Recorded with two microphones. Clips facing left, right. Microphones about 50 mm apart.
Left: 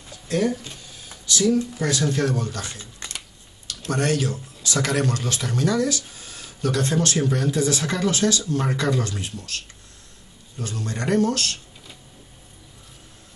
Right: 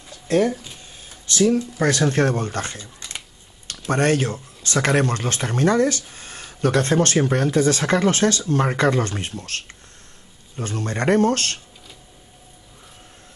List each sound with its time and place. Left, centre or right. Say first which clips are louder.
0.3 s speech: right 4 dB; right
3.9 s speech: right 4 dB; right